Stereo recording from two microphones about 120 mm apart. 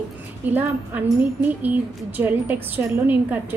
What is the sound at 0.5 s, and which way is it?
A woman's voice, 15° right (ahead or behind).